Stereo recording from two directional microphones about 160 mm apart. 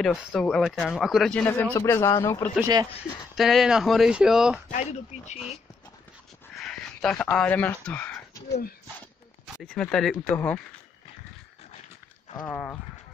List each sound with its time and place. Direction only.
0.0 s a man's voice: centre (ahead or behind); by 2.4 s 20° left (ahead or behind)
2.6 s speech: 25° right (ahead or behind)
3.3 s speech: centre (ahead or behind)
4.6 s speech: 50° left (ahead or behind)
6.6 s speech: 5° left (ahead or behind)
8.5 s speech: 70° left (ahead or behind)
9.6 s speech: 5° left (ahead or behind)
12.4 s speech: 5° left (ahead or behind)